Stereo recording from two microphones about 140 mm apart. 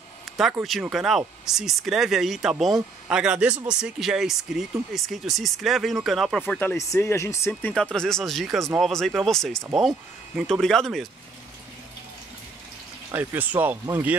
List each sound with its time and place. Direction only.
0.2 s a sound: centre (ahead or behind)
0.7 s speech: centre (ahead or behind)
6.4 s speech: 15° left (ahead or behind)
7.7 s speech: 5° left (ahead or behind)
13.1 s speech: 15° right (ahead or behind)